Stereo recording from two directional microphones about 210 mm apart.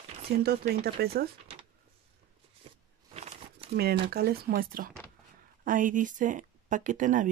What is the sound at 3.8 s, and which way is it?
Speech, 50° right (ahead or behind).